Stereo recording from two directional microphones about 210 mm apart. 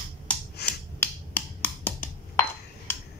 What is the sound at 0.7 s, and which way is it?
Finger snapping, 10° left (ahead or behind).